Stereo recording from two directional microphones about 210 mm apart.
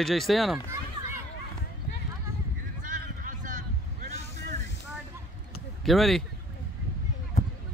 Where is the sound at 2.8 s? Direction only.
40° right (ahead or behind).